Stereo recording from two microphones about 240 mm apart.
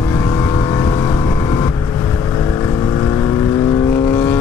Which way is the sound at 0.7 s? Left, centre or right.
Centre.